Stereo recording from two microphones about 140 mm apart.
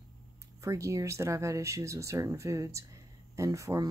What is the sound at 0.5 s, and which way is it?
Speech, 20° right (ahead or behind).